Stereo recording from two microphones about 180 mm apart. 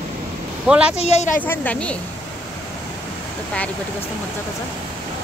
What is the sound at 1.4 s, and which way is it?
Speech, 10° left (ahead or behind).